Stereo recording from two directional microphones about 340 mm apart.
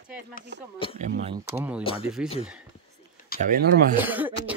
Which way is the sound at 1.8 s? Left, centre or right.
Centre.